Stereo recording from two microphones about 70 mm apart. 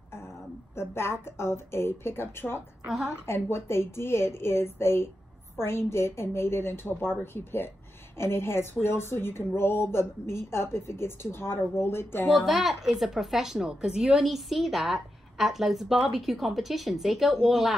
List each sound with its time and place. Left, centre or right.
0.7 s a woman's voice: left
2.9 s a woman's voice: centre
3.3 s a woman's voice: left
12.3 s a woman's voice: centre